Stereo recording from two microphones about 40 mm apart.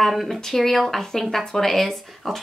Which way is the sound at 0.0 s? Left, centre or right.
Centre.